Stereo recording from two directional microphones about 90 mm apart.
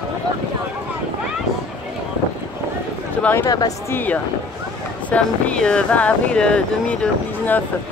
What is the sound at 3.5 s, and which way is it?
Speech, 45° left (ahead or behind).